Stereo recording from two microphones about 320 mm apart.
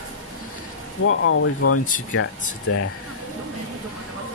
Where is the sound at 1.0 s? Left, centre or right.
Left.